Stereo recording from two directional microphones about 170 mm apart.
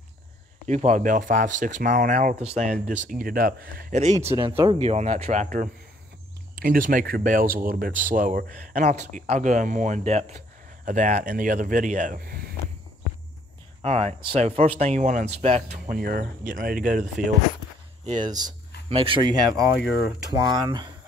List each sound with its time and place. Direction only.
0.7 s speech: 45° right (ahead or behind); by 12.5 s 60° right (ahead or behind)
13.8 s speech: 40° right (ahead or behind)
15.9 s speech: 55° right (ahead or behind)
18.2 s speech: 25° right (ahead or behind)
19.9 s speech: centre (ahead or behind)
20.2 s speech: 20° right (ahead or behind)